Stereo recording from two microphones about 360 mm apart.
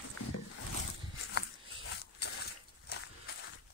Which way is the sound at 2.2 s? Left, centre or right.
Left.